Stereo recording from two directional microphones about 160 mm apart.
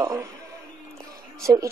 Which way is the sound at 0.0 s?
20° right (ahead or behind).